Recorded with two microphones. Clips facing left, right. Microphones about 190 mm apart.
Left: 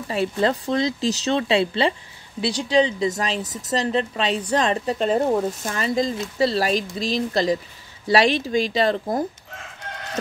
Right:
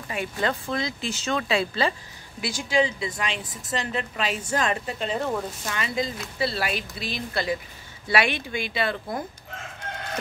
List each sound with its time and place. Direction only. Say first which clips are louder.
0.1 s speech: left 6 dB; 35° left (ahead or behind)